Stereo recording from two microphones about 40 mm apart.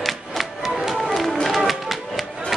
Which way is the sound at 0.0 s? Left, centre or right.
Centre.